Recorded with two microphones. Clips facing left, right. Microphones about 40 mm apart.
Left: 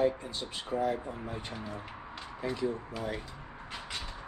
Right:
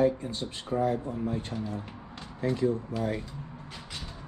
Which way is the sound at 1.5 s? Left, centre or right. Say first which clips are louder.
Right 5 dB; left.